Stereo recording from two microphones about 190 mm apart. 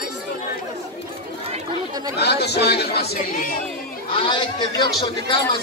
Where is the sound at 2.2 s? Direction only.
60° left (ahead or behind).